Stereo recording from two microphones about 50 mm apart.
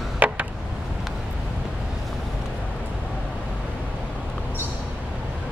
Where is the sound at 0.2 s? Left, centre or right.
Right.